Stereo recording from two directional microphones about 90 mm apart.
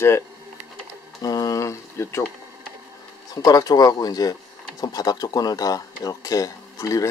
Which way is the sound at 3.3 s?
45° left (ahead or behind).